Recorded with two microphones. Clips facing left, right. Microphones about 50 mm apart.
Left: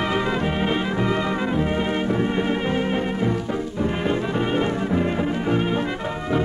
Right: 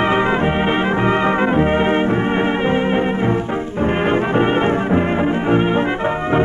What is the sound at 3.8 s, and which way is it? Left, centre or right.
Brass instrument, right.